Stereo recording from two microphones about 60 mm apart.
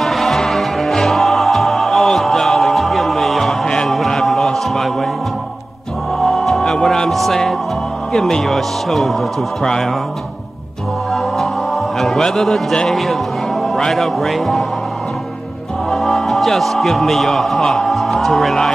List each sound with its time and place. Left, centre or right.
0.0 s music: centre
3.6 s a sound: centre
3.9 s chant: centre
6.2 s music: centre
8.1 s speech: centre
11.1 s music: centre
12.8 s a man's voice: centre
15.9 s a man's voice: centre